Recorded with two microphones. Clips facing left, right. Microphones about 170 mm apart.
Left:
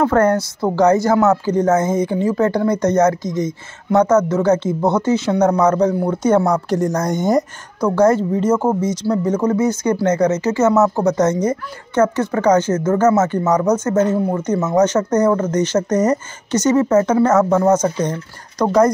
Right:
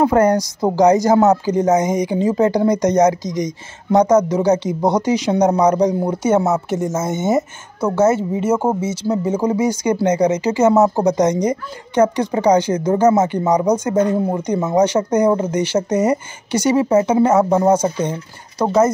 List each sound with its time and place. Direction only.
0.0 s speech: 15° right (ahead or behind)